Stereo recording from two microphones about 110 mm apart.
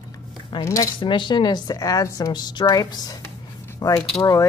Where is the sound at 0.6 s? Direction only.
30° left (ahead or behind).